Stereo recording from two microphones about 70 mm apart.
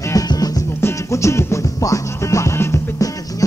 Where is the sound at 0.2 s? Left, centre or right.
Left.